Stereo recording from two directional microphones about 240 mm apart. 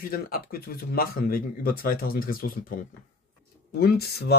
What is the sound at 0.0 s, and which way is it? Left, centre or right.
A man's voice, left.